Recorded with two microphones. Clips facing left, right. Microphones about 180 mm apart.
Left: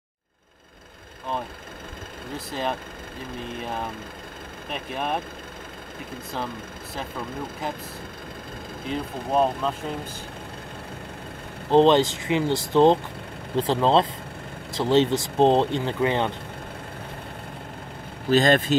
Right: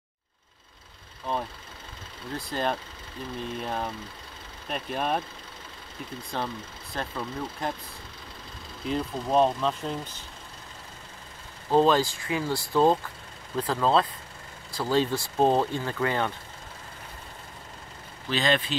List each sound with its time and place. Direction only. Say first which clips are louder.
2.3 s speech: even; centre (ahead or behind)
7.6 s speech: even; 5° left (ahead or behind)
8.8 s speech: right 1 dB; centre (ahead or behind)
11.7 s speech: left 5 dB; 25° left (ahead or behind)
18.3 s speech: left 7 dB; 45° left (ahead or behind)